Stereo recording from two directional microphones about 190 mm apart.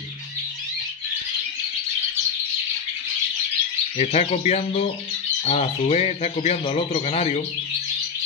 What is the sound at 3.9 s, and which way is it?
Speech, 35° left (ahead or behind).